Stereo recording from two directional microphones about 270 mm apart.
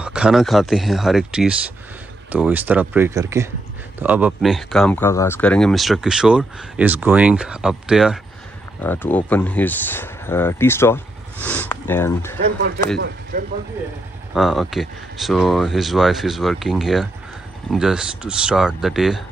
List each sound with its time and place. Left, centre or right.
0.0 s speech: centre
12.4 s speech: right
14.3 s speech: centre